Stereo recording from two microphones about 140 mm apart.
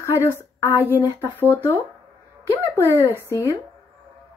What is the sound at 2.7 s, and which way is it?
Speech, 15° left (ahead or behind).